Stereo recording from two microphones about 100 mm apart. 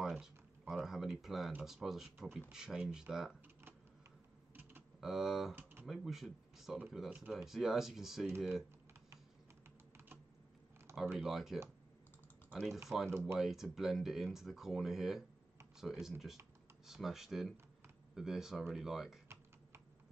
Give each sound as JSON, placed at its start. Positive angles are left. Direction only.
{"t": 0.0, "sound": "speech", "side_deg": -5}
{"t": 5.0, "sound": "speech", "side_deg": 0}
{"t": 5.5, "sound": "a sound", "side_deg": -20}
{"t": 5.9, "sound": "speech", "side_deg": 0}
{"t": 7.1, "sound": "speech", "side_deg": -10}
{"t": 11.1, "sound": "speech", "side_deg": 0}
{"t": 12.9, "sound": "speech", "side_deg": -10}